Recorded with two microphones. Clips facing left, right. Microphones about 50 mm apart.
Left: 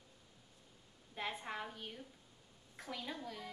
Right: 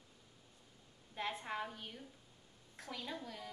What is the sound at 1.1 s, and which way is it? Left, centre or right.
A woman's voice, centre.